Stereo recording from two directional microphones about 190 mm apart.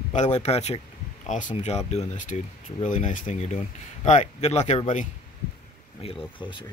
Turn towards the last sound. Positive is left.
turn(degrees=25)  # may be behind; listen again after turning